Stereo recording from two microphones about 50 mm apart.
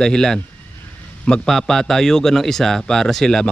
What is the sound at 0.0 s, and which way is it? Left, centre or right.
Speech, centre.